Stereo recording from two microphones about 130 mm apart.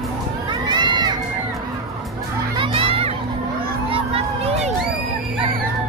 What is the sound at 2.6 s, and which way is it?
Children playing, 45° right (ahead or behind).